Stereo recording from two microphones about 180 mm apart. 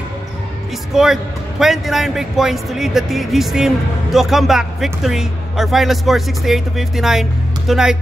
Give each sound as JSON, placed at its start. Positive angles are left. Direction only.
{"t": 0.9, "sound": "a man's voice", "side_deg": 0}